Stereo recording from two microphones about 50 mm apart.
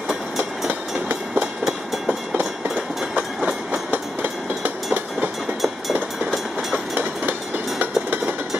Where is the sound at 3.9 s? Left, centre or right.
Right.